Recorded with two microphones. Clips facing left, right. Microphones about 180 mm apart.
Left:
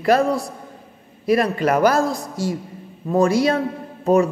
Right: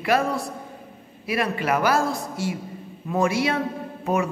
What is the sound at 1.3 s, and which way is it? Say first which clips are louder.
Speech: left 6 dB; 40° left (ahead or behind).